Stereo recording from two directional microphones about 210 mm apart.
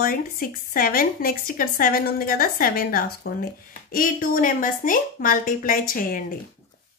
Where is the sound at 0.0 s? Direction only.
45° left (ahead or behind).